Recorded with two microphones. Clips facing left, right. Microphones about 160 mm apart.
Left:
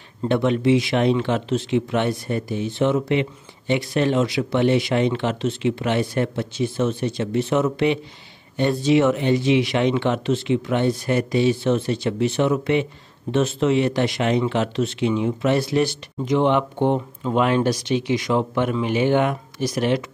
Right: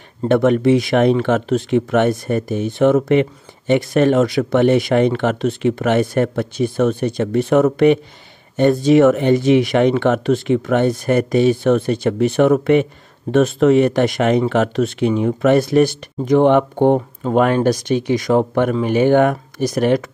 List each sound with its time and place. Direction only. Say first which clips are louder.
0.7 s speech: right 4 dB; 45° right (ahead or behind)